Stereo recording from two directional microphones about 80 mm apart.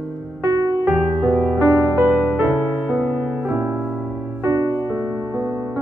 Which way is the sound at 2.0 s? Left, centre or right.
Right.